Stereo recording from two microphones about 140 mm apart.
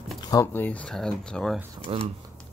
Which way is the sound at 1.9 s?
45° right (ahead or behind).